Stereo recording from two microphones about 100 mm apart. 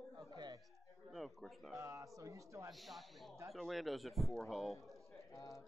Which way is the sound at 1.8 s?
35° right (ahead or behind).